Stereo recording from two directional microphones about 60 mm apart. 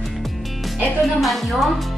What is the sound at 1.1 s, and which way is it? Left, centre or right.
Speech, centre.